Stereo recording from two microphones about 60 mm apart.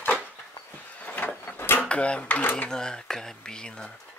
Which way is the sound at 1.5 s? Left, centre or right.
Left.